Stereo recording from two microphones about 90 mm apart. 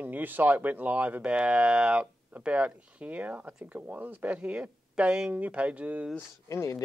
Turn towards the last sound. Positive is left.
turn(degrees=35)  # may be behind; listen again after turning